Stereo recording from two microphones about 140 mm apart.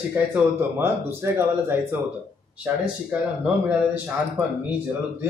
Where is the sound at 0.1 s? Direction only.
15° right (ahead or behind).